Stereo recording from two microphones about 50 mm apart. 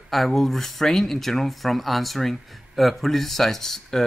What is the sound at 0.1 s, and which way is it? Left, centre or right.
Speech, centre.